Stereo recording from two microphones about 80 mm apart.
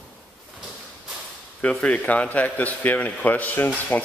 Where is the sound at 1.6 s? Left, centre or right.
Centre.